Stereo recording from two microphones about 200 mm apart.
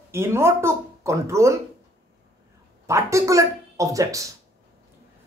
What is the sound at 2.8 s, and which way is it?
Speech, 15° right (ahead or behind).